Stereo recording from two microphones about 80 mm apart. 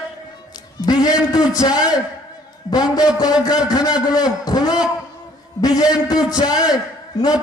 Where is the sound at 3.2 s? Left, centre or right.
Left.